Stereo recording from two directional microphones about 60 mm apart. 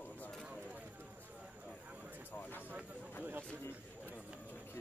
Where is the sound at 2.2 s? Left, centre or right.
Left.